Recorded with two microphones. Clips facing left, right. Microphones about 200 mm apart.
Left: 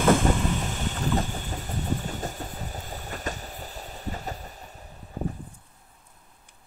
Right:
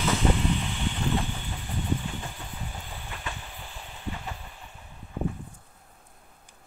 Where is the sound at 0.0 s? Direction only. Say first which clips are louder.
Left 4 dB; 50° left (ahead or behind).